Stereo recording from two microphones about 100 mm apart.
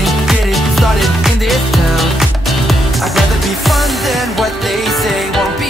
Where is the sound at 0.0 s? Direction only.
Centre (ahead or behind).